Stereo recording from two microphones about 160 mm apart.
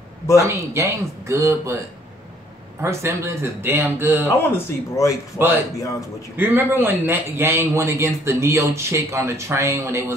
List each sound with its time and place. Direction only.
0.4 s a man's voice: 15° right (ahead or behind)
2.8 s a man's voice: 15° right (ahead or behind)
4.3 s speech: 20° left (ahead or behind)
6.3 s a man's voice: 15° right (ahead or behind)